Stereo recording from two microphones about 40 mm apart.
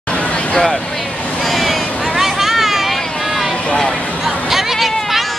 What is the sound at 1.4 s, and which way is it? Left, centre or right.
Vehicle, centre.